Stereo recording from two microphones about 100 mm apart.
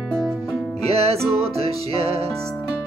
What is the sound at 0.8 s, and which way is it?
Music, 90° right.